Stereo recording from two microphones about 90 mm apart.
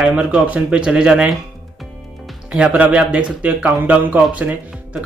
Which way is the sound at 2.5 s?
15° right (ahead or behind).